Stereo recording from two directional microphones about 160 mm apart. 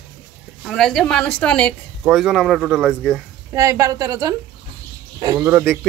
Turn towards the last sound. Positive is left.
turn(degrees=-15)  # may be behind; listen again after turning